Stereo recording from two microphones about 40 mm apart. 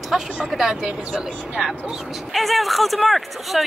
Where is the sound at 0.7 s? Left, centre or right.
Right.